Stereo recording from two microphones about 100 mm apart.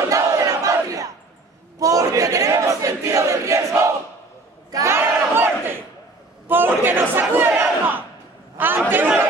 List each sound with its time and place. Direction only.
0.1 s crowd: 35° right (ahead or behind)
1.8 s battle cry: 35° right (ahead or behind)
4.6 s crowd: 35° right (ahead or behind)
4.9 s battle cry: 20° right (ahead or behind)
8.5 s a sound: 20° right (ahead or behind)
8.9 s chatter: 20° right (ahead or behind)